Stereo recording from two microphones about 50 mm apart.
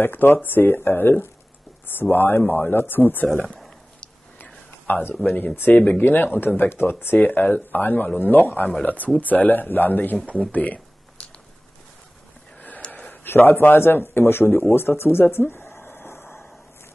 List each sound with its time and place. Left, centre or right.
0.0 s speech: left
4.4 s whispering: left
5.7 s speech: left
12.8 s a sound: left
13.2 s a man's voice: left